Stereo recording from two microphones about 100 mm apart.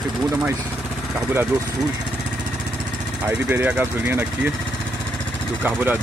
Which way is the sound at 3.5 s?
20° right (ahead or behind).